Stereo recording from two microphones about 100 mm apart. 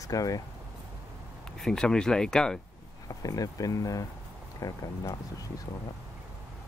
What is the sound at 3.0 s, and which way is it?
Speech, 35° left (ahead or behind).